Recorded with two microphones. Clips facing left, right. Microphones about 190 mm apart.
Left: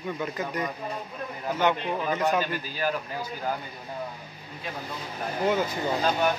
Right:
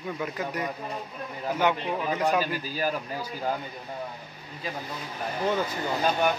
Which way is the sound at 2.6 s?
40° right (ahead or behind).